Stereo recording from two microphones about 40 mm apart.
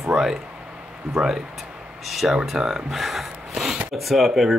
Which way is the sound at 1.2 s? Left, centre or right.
Centre.